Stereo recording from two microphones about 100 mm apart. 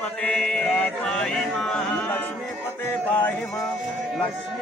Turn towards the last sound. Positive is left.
turn(degrees=20)  # may be behind; listen again after turning